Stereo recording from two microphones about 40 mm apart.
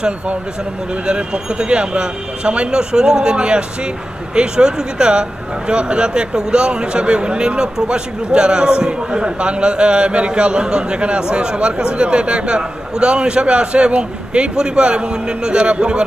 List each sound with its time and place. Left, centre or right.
1.0 s a man's voice: right